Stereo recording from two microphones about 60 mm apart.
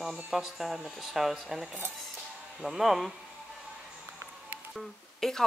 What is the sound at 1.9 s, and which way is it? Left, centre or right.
Music, centre.